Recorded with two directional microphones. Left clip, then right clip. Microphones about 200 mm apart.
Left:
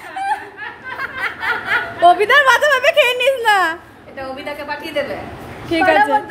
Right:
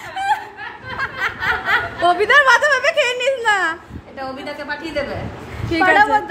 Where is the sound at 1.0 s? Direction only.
20° right (ahead or behind).